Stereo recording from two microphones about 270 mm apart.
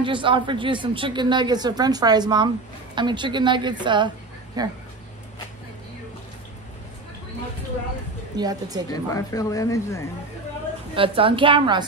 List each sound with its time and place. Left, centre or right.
0.0 s speech: centre
8.4 s speech: centre
9.1 s speech: centre
11.0 s a woman's voice: centre